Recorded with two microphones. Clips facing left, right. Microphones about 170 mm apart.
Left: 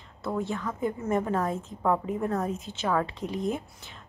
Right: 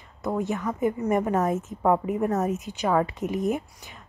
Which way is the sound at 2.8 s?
10° right (ahead or behind).